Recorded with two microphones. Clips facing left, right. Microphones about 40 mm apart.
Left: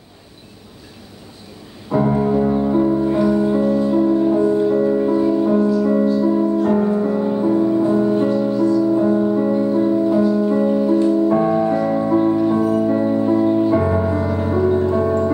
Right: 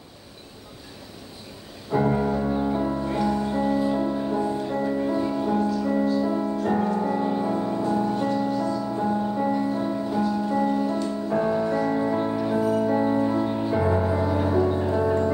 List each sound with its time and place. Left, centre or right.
2.0 s music: centre
3.6 s music: centre
4.3 s music: centre
7.8 s music: centre
11.1 s music: centre
13.7 s music: centre